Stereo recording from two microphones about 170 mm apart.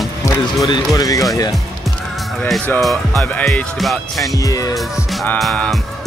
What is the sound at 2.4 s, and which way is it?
Speech, 5° left (ahead or behind).